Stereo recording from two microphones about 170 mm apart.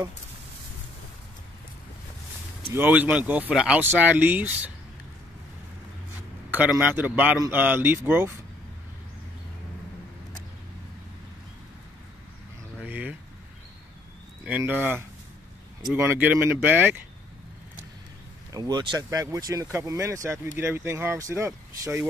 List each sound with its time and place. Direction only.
2.7 s speech: 10° right (ahead or behind)
6.5 s speech: 10° right (ahead or behind)
12.8 s a sound: 10° right (ahead or behind)
14.6 s speech: 10° right (ahead or behind)
18.5 s speech: 25° right (ahead or behind)